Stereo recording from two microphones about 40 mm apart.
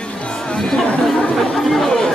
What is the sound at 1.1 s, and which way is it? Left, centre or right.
Chatter, centre.